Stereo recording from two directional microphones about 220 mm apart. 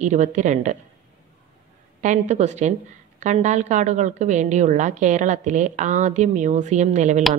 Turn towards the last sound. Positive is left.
turn(degrees=-30)  # may be behind; listen again after turning